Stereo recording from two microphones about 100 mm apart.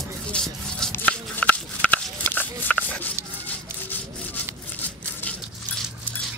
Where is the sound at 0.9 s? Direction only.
15° left (ahead or behind).